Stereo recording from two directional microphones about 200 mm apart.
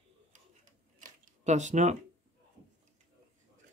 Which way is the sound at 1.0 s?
35° right (ahead or behind).